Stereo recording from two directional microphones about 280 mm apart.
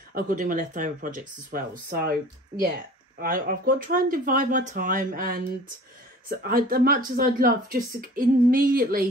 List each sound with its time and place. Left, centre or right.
0.1 s speech: right
3.2 s speech: right